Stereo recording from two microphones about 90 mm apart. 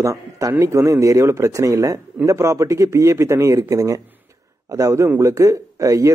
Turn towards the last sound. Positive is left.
turn(degrees=-35)  # may be behind; listen again after turning